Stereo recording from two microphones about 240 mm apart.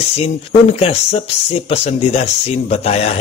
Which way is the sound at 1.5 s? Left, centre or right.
Left.